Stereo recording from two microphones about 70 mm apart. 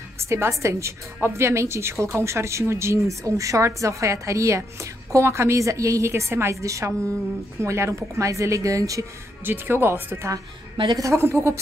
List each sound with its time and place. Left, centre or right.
0.2 s a woman's voice: right
9.4 s a woman's voice: right
10.9 s a woman's voice: right
11.1 s a woman's voice: right